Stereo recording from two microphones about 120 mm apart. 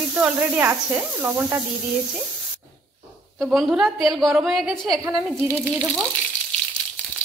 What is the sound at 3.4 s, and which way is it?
Speech, centre (ahead or behind).